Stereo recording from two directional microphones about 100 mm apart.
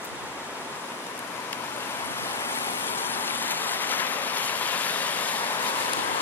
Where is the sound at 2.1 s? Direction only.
25° left (ahead or behind).